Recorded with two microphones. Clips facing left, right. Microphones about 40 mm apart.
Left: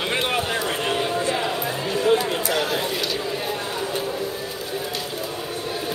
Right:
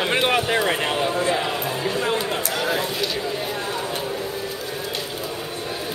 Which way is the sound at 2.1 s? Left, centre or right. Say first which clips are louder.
Left 3 dB; centre.